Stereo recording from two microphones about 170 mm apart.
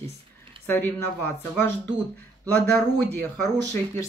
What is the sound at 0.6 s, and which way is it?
Speech, 10° left (ahead or behind).